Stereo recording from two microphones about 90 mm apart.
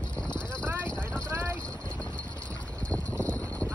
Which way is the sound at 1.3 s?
30° right (ahead or behind).